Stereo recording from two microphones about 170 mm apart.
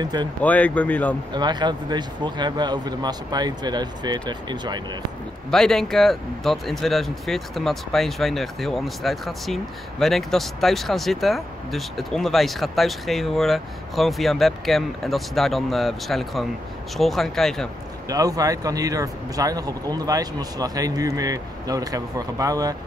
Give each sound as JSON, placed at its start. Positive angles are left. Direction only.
{"t": 0.0, "sound": "speech", "side_deg": -25}
{"t": 0.4, "sound": "speech", "side_deg": 10}
{"t": 1.3, "sound": "speech", "side_deg": -25}
{"t": 5.5, "sound": "speech", "side_deg": 5}
{"t": 18.0, "sound": "speech", "side_deg": -20}